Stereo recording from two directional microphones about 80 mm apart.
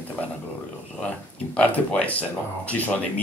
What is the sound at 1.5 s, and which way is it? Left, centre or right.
Speech, centre.